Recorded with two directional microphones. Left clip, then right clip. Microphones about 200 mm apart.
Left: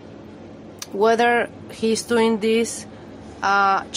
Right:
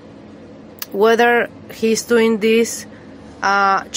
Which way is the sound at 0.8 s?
10° right (ahead or behind).